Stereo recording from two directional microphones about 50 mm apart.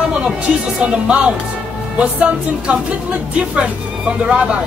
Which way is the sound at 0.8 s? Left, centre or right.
Right.